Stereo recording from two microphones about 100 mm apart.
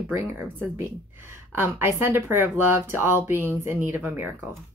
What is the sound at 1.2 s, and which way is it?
Speech, 25° right (ahead or behind).